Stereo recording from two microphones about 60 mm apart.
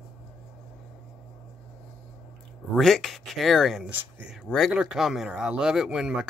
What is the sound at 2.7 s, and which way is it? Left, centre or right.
Speech, centre.